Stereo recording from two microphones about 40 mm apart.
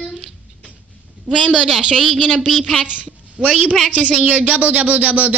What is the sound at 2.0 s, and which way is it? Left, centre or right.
Speech, centre.